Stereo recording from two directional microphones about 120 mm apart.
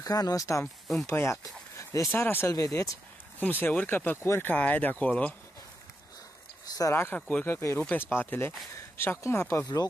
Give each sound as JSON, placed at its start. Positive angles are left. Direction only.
{"t": 0.0, "sound": "speech", "side_deg": 30}
{"t": 3.3, "sound": "speech", "side_deg": 15}
{"t": 6.6, "sound": "speech", "side_deg": 30}